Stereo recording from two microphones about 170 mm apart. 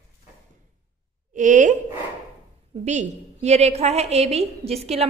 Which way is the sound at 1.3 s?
50° right (ahead or behind).